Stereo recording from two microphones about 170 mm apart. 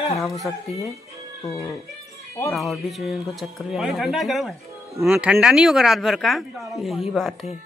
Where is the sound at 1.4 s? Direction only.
15° left (ahead or behind).